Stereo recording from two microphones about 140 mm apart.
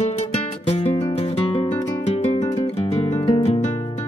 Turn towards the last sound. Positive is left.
turn(degrees=40)  # may be behind; listen again after turning